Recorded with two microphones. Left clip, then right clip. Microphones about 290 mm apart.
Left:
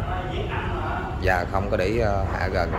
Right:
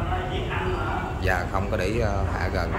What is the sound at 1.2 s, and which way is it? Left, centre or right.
Speech, centre.